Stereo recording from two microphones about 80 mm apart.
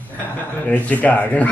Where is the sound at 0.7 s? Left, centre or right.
Centre.